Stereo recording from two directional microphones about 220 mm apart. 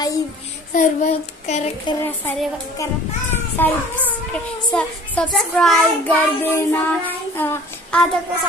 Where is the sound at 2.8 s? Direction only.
15° left (ahead or behind).